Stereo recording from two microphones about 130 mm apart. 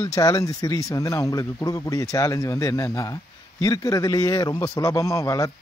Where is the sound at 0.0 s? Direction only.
30° left (ahead or behind).